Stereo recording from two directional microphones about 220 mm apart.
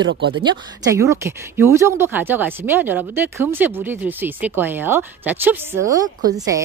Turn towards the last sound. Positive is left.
turn(degrees=-15)  # may be behind; listen again after turning